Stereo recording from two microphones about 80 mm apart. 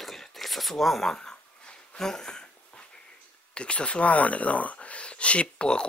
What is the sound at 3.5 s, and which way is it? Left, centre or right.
Speech, centre.